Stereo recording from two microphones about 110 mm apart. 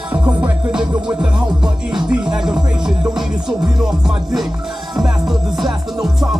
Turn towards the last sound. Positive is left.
turn(degrees=0)  # may be behind; listen again after turning